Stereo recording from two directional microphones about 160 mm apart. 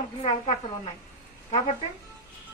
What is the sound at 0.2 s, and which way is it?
Speech, 45° left (ahead or behind).